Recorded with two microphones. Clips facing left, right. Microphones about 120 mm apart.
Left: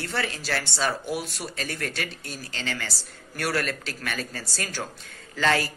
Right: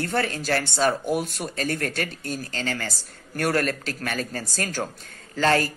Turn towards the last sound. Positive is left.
turn(degrees=-40)  # may be behind; listen again after turning